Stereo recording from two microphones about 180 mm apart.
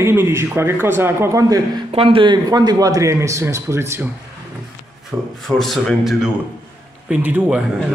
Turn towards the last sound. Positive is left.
turn(degrees=-10)  # may be behind; listen again after turning